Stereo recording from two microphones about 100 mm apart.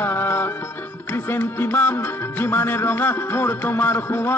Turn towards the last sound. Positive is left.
turn(degrees=25)  # may be behind; listen again after turning